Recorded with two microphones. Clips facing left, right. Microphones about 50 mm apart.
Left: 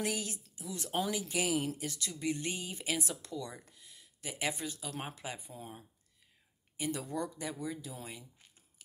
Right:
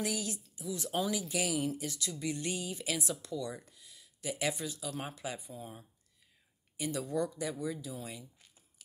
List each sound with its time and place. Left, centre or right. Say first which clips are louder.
0.0 s speech: even; left
5.2 s speech: right 2 dB; left
8.0 s a sound: right 2 dB; left